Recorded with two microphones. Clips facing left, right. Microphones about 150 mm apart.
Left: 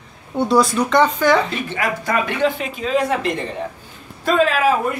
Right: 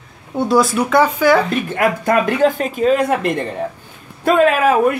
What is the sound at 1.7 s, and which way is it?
A woman's voice, 55° right (ahead or behind).